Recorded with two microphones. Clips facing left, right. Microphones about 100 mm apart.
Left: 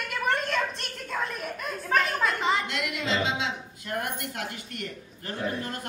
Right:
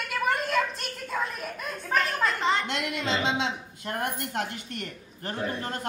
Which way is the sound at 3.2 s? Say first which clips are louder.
Right 1 dB; 35° right (ahead or behind).